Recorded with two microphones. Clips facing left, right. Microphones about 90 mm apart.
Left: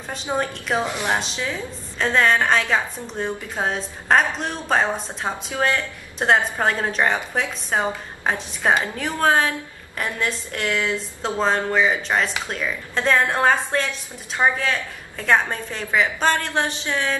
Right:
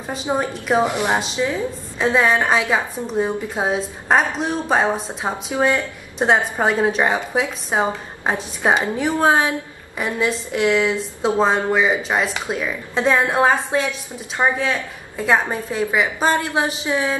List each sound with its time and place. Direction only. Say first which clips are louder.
0.3 s a woman's voice: right 4 dB; 20° right (ahead or behind)
7.8 s a woman's voice: right 3 dB; 20° right (ahead or behind)
9.9 s a woman's voice: right 4 dB; 5° right (ahead or behind)